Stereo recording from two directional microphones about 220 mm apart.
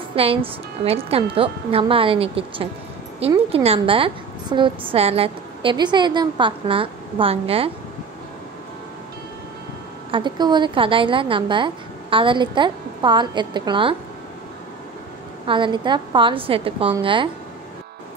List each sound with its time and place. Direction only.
0.1 s a woman's voice: 25° right (ahead or behind)
10.1 s a woman's voice: 20° right (ahead or behind)
15.4 s a woman's voice: 20° right (ahead or behind)